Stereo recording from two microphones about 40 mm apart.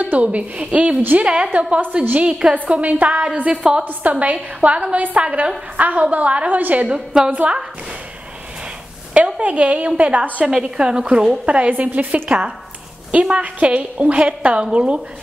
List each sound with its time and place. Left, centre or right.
0.0 s a woman's voice: right
7.1 s a woman's voice: centre
9.1 s a woman's voice: right
10.4 s a woman's voice: centre
11.7 s a woman's voice: right
13.4 s a woman's voice: right